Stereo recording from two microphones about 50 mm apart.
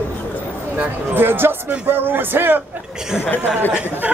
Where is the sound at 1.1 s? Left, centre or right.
Right.